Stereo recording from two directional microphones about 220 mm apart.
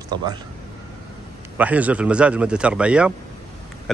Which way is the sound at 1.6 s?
5° right (ahead or behind).